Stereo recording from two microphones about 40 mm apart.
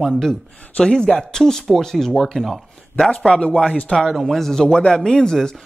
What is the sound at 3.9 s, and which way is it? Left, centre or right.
Speech, centre.